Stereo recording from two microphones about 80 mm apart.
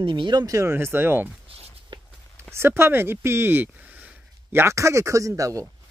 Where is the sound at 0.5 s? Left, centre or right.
Right.